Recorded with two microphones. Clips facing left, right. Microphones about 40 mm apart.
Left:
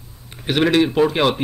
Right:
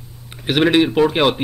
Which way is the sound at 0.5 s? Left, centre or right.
Centre.